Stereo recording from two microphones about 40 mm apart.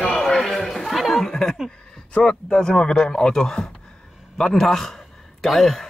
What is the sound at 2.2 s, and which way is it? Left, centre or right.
A man's voice, left.